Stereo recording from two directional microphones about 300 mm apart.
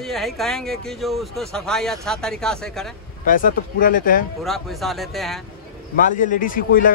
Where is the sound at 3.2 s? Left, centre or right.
Left.